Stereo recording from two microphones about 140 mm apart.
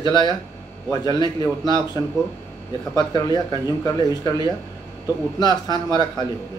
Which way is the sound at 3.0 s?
30° left (ahead or behind).